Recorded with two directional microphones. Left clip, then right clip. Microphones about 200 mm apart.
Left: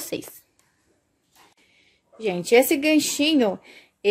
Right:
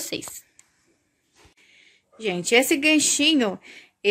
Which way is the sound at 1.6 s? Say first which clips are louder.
Right 5 dB; centre (ahead or behind).